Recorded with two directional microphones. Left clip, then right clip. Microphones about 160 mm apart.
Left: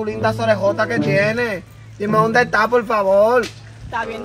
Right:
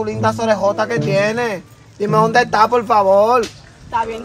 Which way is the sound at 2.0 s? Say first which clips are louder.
Right 2 dB; 50° right (ahead or behind).